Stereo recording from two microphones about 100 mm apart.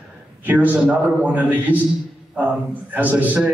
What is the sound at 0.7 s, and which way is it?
A man's voice, 15° right (ahead or behind).